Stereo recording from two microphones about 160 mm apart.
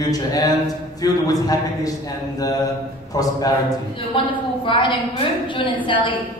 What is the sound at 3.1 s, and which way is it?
A woman's voice, 25° left (ahead or behind).